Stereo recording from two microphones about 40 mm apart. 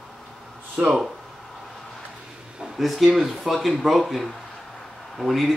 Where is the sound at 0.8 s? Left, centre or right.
Right.